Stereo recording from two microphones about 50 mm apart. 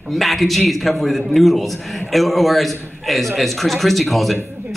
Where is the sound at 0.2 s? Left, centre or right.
Centre.